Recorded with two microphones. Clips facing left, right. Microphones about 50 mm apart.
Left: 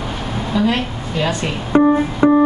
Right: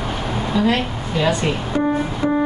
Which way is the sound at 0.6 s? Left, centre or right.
Centre.